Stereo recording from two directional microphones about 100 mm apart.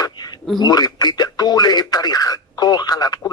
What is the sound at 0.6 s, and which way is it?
Speech, 45° left (ahead or behind).